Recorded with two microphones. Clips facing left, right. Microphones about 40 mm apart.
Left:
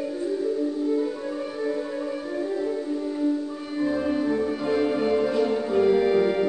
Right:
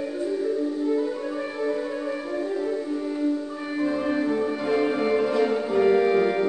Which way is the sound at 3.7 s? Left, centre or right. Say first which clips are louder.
Even; centre.